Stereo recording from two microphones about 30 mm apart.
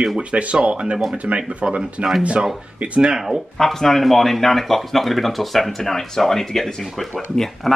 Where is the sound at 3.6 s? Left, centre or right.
Centre.